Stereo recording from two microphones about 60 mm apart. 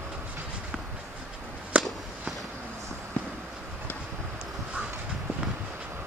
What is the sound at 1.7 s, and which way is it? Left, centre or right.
Walk, right.